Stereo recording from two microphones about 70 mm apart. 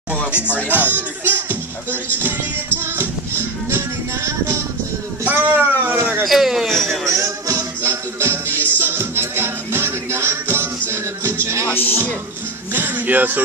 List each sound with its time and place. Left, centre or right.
0.5 s speech: left
0.7 s music: right
5.2 s a sound: right
6.2 s a man's voice: centre
7.1 s music: right
7.8 s music: right
11.6 s speech: left
12.7 s speech: right